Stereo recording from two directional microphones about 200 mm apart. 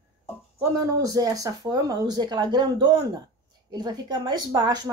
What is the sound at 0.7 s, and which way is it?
Speech, 15° right (ahead or behind).